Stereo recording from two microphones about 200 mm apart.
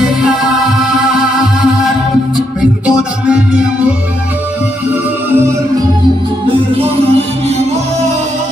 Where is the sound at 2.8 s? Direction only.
5° right (ahead or behind).